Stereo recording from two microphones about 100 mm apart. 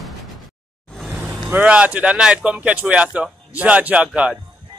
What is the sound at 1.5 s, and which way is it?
Speech, 15° right (ahead or behind).